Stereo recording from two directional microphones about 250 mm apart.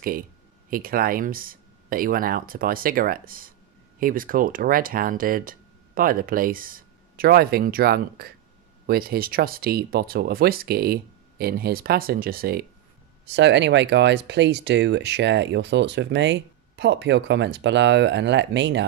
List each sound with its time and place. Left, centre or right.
0.7 s speech: right